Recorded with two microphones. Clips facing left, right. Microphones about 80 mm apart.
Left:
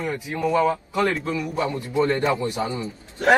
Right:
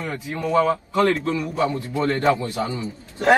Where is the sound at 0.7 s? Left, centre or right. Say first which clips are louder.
Right 3 dB; left.